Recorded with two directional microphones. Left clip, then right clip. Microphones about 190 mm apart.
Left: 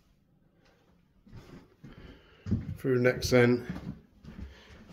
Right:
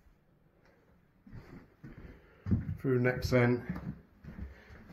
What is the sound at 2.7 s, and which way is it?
Speech, centre (ahead or behind).